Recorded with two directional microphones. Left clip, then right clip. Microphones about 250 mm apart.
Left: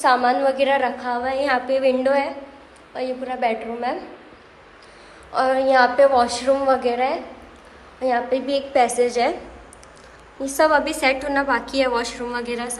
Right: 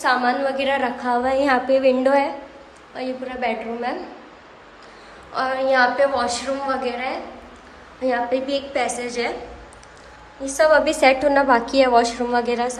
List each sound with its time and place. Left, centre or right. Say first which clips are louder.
0.0 s a woman's voice: left 2 dB; centre
5.3 s a woman's voice: left 2 dB; centre
10.6 s a woman's voice: right 3 dB; centre